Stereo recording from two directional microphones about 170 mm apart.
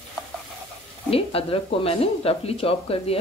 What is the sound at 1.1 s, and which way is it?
Speech, 35° left (ahead or behind).